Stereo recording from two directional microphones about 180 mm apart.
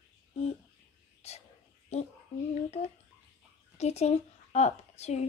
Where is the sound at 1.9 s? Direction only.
35° left (ahead or behind).